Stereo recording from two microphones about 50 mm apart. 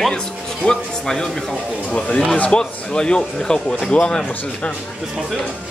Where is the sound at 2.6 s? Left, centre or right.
Centre.